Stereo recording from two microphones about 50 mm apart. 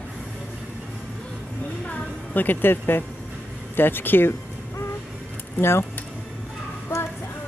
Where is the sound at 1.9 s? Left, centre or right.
Left.